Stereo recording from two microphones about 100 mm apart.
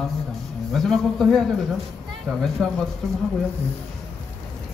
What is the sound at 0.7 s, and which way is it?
Speech, 5° left (ahead or behind).